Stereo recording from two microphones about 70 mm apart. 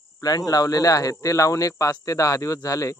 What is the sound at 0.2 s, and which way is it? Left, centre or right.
Speech, left.